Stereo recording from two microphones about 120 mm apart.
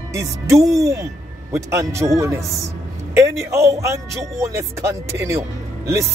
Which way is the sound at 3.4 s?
25° right (ahead or behind).